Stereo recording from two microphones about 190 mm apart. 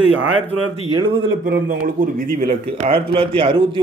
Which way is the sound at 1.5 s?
45° right (ahead or behind).